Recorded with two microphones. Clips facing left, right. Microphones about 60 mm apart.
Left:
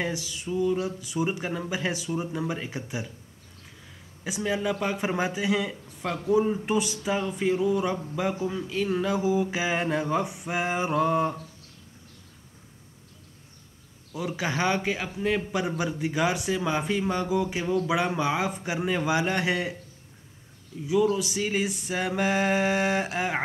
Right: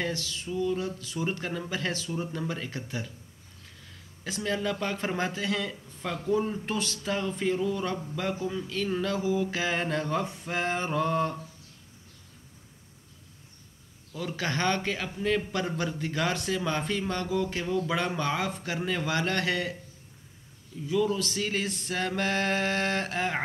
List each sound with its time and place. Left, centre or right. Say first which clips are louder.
0.0 s speech: left 2 dB; centre
4.2 s speech: left 2 dB; centre
14.1 s speech: left 2 dB; centre
20.8 s speech: left 3 dB; centre